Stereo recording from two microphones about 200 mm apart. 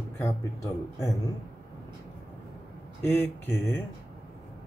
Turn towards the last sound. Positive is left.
turn(degrees=10)  # may be behind; listen again after turning